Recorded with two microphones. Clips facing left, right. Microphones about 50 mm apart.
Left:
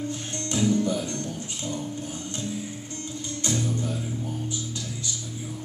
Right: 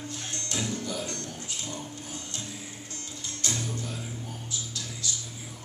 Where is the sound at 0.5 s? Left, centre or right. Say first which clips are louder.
Left 10 dB; left.